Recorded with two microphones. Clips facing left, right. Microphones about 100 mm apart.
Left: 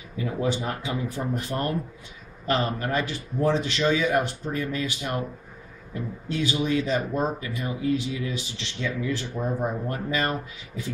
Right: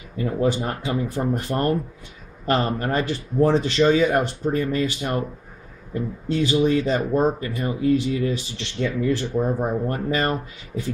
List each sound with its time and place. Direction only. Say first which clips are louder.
0.2 s speech: right 5 dB; 45° right (ahead or behind)
6.3 s speech: right 6 dB; 40° right (ahead or behind)